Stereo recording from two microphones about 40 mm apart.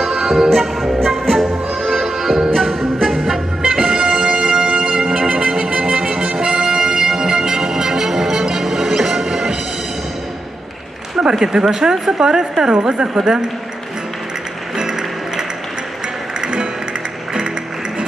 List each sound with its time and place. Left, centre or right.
0.0 s music: centre
11.1 s a sound: centre
11.7 s speech: centre
14.8 s music: centre